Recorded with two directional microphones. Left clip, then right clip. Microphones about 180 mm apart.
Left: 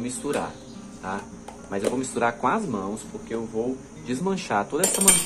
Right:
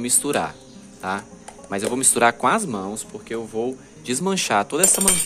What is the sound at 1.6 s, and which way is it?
Speech, 60° right (ahead or behind).